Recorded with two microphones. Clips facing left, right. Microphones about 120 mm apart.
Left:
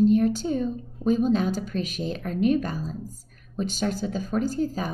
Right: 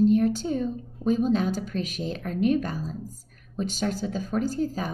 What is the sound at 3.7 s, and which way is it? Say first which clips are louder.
Speech: left 1 dB; 20° left (ahead or behind).